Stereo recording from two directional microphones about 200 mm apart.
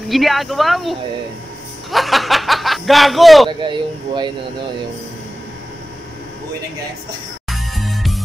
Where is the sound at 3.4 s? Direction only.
25° right (ahead or behind).